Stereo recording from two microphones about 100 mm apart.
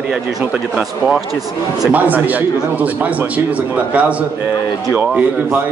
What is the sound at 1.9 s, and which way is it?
Speech, 15° right (ahead or behind).